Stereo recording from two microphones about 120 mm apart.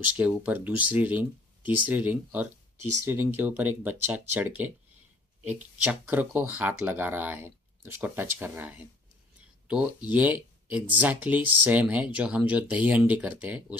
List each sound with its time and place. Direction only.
0.2 s speech: 15° right (ahead or behind)